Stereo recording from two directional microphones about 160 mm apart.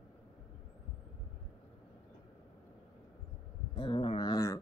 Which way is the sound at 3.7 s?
30° left (ahead or behind).